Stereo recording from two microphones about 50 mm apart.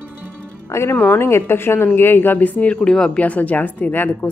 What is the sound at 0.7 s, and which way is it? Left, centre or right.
Speech, left.